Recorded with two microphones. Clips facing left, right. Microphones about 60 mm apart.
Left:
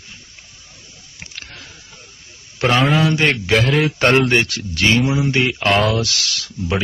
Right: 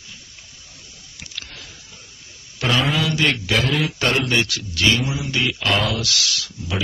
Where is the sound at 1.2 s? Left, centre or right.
Left.